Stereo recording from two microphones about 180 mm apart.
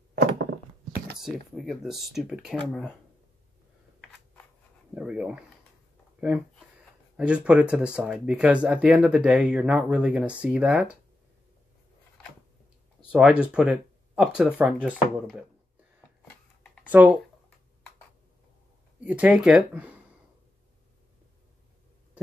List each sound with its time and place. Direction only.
0.1 s a sound: 55° right (ahead or behind)
1.2 s speech: centre (ahead or behind)
4.9 s speech: 5° right (ahead or behind)
7.2 s speech: 5° right (ahead or behind)
13.1 s speech: 5° right (ahead or behind)
16.8 s speech: 10° right (ahead or behind)
19.0 s speech: 10° right (ahead or behind)